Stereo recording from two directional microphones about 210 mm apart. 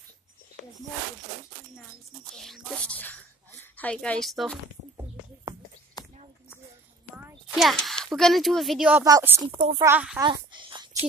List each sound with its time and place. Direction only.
2.3 s speech: centre (ahead or behind)
7.5 s a woman's voice: centre (ahead or behind)
10.2 s a sound: 20° right (ahead or behind)